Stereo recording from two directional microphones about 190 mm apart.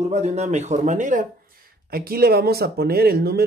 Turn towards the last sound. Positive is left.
turn(degrees=-55)  # may be behind; listen again after turning